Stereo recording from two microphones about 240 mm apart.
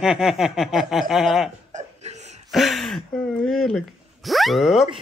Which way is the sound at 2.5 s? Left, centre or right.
Centre.